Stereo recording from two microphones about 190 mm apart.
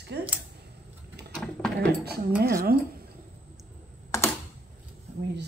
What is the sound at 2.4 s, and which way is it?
Speech, 55° right (ahead or behind).